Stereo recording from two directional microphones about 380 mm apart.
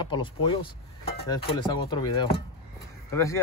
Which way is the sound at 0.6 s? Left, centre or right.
Left.